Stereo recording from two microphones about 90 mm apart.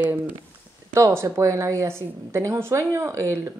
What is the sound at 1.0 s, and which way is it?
A woman's voice, 30° right (ahead or behind).